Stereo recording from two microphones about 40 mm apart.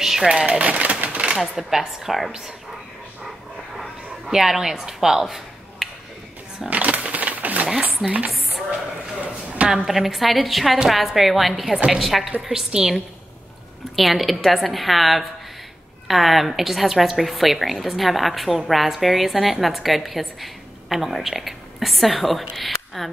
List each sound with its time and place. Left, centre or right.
0.0 s a sound: centre
0.5 s speech: right
1.1 s a sound: right
1.5 s a woman's voice: centre
4.3 s a woman's voice: centre
6.7 s a sound: right
8.0 s speech: right
9.8 s a woman's voice: centre
13.9 s a woman's voice: centre